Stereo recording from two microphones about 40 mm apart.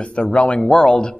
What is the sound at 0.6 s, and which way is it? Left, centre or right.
Speech, centre.